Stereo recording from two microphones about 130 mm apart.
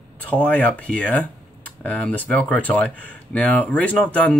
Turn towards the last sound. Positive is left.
turn(degrees=10)  # may be behind; listen again after turning